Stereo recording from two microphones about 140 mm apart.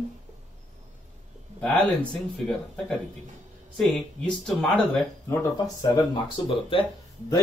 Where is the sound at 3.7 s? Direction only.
5° left (ahead or behind).